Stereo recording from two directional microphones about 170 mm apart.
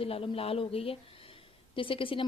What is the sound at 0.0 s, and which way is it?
A woman's voice, 35° left (ahead or behind).